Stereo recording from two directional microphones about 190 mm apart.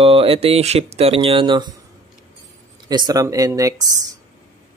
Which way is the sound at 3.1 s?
20° right (ahead or behind).